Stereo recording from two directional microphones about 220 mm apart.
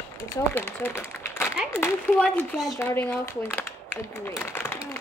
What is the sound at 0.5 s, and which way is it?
Speech, 10° left (ahead or behind).